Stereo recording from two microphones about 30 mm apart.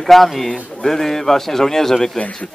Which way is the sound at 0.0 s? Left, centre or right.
Centre.